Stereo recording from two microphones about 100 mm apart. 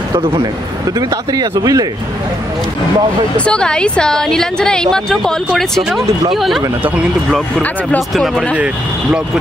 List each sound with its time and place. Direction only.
0.9 s speech: 40° right (ahead or behind)
3.3 s a woman's voice: 10° left (ahead or behind)
8.1 s speech: centre (ahead or behind)